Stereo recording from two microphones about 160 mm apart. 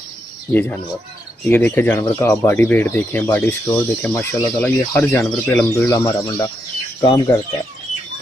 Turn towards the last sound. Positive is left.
turn(degrees=20)  # may be behind; listen again after turning